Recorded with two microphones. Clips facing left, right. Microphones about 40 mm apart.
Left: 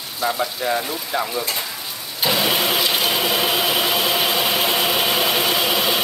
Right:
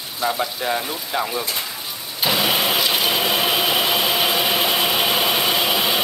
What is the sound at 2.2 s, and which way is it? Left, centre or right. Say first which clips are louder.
Vehicle: even; centre.